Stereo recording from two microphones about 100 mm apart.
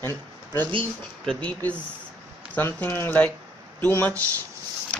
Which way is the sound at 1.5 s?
15° left (ahead or behind).